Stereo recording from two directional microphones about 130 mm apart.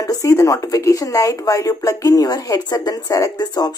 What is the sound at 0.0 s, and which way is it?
Speech, 25° left (ahead or behind).